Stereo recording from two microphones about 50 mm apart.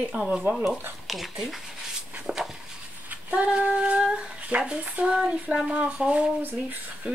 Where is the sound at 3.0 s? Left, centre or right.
Right.